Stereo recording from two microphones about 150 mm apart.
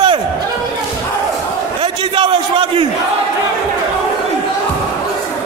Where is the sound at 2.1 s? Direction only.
35° right (ahead or behind).